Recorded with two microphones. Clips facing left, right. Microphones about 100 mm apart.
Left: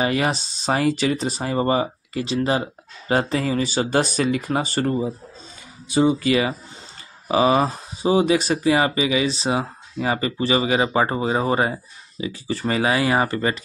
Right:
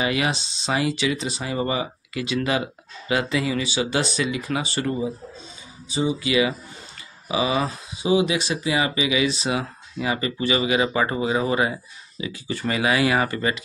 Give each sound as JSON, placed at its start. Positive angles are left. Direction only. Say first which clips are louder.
{"t": 0.0, "sound": "speech", "louder": "left 2 dB", "side_deg": 40}
{"t": 5.9, "sound": "speech", "louder": "left 6 dB", "side_deg": 55}